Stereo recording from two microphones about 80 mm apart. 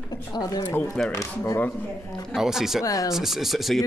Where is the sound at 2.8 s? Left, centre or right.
Left.